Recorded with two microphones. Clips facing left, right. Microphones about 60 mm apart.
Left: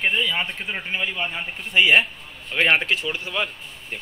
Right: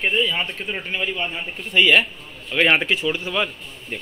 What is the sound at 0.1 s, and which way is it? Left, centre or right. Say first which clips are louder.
Speech: right 2 dB; left.